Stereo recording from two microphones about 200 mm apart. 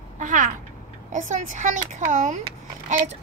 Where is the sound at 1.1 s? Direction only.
40° right (ahead or behind).